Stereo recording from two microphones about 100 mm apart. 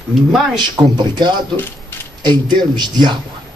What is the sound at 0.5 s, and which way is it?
Speech, 45° right (ahead or behind).